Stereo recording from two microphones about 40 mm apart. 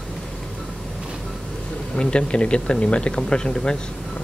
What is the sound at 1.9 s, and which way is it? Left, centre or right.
Speech, left.